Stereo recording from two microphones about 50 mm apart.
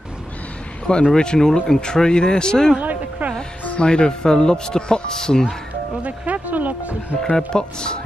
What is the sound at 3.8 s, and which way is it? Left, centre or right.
Speech, centre.